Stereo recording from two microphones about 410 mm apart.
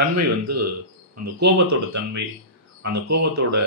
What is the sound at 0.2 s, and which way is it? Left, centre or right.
Speech, right.